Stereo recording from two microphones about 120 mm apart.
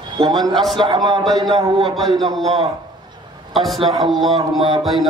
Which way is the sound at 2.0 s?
Centre (ahead or behind).